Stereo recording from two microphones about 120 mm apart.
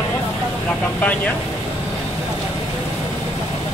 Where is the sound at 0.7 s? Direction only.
15° left (ahead or behind).